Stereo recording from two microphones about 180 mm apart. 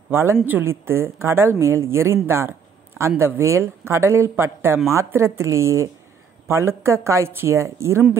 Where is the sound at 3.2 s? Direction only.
15° right (ahead or behind).